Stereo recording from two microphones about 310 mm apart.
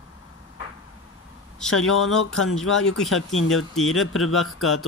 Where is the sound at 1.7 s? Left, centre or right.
Left.